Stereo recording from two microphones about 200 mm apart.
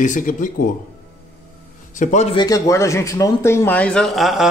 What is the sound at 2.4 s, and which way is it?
A man's voice, 15° left (ahead or behind).